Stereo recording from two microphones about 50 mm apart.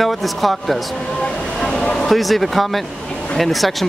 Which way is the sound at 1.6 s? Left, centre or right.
Centre.